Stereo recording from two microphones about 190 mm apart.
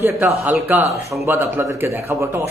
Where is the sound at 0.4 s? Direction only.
10° right (ahead or behind).